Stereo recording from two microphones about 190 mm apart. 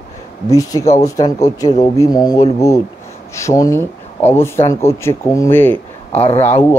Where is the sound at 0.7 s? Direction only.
20° left (ahead or behind).